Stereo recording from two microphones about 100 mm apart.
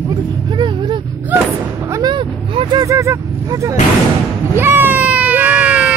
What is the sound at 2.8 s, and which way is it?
Vehicle, 30° right (ahead or behind).